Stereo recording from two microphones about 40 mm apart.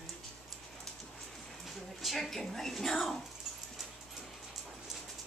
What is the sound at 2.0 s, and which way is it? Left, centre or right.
A woman's voice, centre.